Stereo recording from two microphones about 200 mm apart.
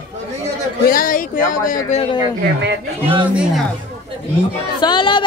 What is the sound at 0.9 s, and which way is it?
A woman's voice, 45° left (ahead or behind).